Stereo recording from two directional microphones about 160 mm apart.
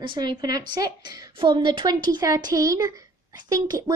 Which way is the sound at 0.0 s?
30° right (ahead or behind).